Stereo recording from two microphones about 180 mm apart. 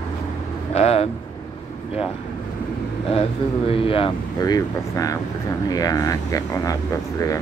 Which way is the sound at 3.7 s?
30° left (ahead or behind).